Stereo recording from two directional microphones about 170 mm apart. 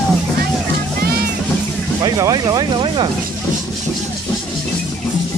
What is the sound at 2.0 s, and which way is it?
Speech, 20° right (ahead or behind).